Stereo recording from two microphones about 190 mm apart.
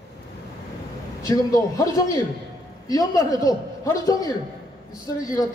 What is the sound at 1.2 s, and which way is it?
A man's voice, 15° left (ahead or behind).